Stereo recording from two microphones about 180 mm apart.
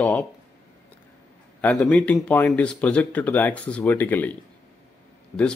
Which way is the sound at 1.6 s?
5° left (ahead or behind).